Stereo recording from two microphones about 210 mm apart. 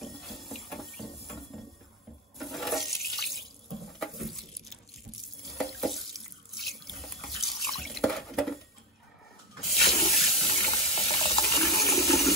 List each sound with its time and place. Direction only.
0.0 s a sound: centre (ahead or behind)
2.3 s toilet flush: centre (ahead or behind)
3.1 s water tap: centre (ahead or behind)
4.0 s a sound: centre (ahead or behind)
5.4 s sink: centre (ahead or behind)
6.6 s water tap: centre (ahead or behind)
9.8 s water: 30° left (ahead or behind)